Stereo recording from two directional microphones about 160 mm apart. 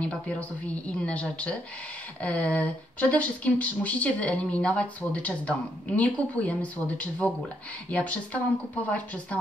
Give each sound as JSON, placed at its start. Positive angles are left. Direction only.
{"t": 0.0, "sound": "speech", "side_deg": 10}